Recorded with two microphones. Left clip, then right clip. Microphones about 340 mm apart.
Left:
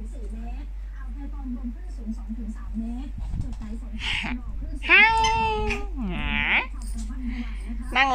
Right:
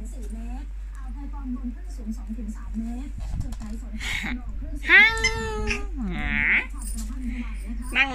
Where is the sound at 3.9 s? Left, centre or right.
Centre.